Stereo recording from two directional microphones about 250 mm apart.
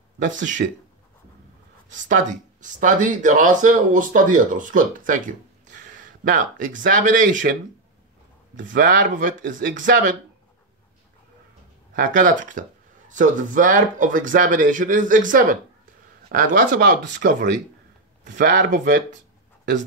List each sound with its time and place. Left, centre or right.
0.2 s speech: right
1.9 s speech: right
8.5 s speech: right
11.9 s speech: right
17.2 s speech: right
18.3 s speech: right